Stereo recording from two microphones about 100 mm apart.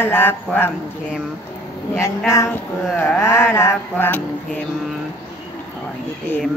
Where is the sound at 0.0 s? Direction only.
20° left (ahead or behind).